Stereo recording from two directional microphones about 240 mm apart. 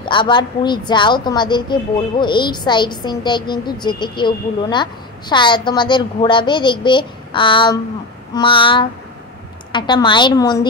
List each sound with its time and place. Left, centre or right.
0.0 s a woman's voice: centre